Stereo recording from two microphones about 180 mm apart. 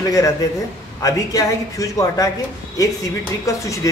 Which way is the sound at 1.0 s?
20° left (ahead or behind).